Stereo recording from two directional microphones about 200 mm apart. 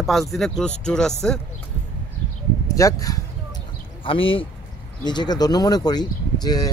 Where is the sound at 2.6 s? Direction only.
15° left (ahead or behind).